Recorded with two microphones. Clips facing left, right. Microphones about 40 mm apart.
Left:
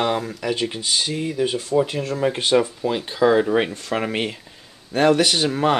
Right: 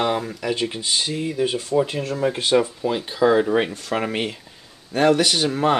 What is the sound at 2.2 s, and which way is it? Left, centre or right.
Speech, centre.